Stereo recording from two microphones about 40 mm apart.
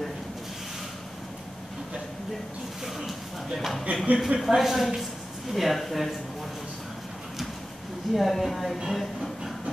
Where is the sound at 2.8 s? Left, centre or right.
Centre.